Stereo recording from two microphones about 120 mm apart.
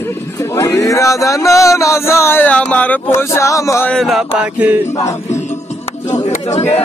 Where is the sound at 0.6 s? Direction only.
25° left (ahead or behind).